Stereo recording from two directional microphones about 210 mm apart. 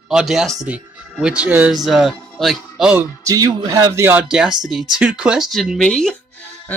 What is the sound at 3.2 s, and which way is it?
A man's voice, 15° right (ahead or behind).